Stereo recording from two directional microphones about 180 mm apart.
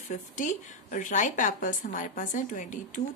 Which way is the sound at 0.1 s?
45° left (ahead or behind).